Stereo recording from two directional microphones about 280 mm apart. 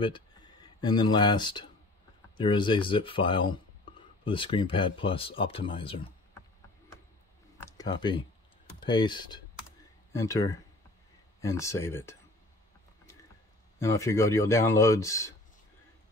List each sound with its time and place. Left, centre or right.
0.0 s speech: centre
7.6 s speech: centre
13.7 s speech: centre